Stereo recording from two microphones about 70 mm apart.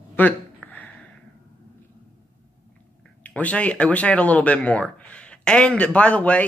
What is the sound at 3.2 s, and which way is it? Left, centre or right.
Speech, centre.